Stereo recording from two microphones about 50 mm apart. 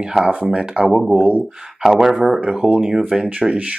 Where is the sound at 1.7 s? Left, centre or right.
Centre.